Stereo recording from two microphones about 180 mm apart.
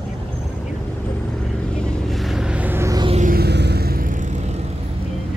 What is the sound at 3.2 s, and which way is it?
Music, 55° right (ahead or behind).